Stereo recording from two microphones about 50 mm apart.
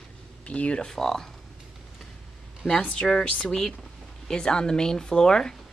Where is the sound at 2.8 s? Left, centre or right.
Centre.